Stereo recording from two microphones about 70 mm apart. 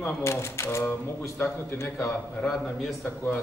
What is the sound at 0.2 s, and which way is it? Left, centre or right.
A man's voice, left.